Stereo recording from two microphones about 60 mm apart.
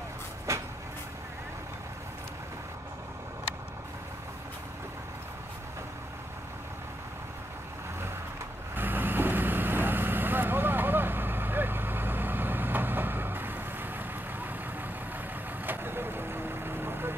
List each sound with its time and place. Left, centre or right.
0.5 s vehicle: right
8.7 s vehicle: right
15.6 s vehicle: right